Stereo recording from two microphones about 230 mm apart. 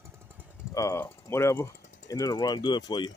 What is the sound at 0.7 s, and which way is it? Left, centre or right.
Speech, centre.